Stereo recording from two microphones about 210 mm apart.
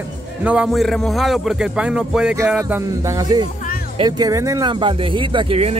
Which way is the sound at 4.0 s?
20° right (ahead or behind).